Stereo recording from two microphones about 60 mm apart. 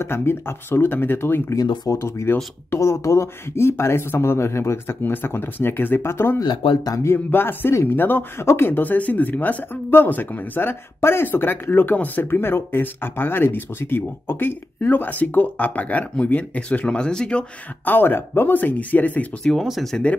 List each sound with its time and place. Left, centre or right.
0.0 s speech: left
1.5 s speech: left
2.0 s speech: left; by 17.5 s centre
17.8 s speech: left
19.6 s speech: centre